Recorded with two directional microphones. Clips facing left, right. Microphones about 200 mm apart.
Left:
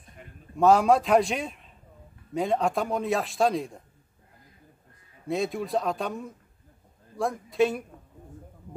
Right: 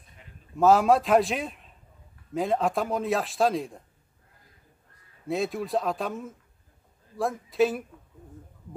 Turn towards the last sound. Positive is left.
turn(degrees=0)  # may be behind; listen again after turning